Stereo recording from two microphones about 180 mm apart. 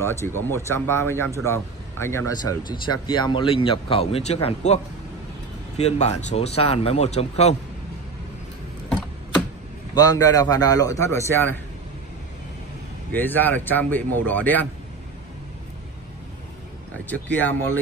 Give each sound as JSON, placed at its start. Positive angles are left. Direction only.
{"t": 0.4, "sound": "speech", "side_deg": 15}
{"t": 5.8, "sound": "speech", "side_deg": 35}
{"t": 9.9, "sound": "speech", "side_deg": 20}
{"t": 13.1, "sound": "speech", "side_deg": 10}
{"t": 17.1, "sound": "speech", "side_deg": 10}